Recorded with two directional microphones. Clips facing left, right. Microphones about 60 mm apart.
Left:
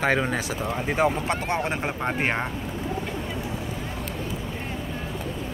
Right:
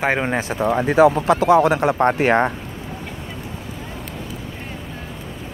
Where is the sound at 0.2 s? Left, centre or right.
Right.